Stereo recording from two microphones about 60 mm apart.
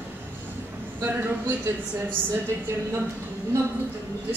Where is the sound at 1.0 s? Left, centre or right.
Right.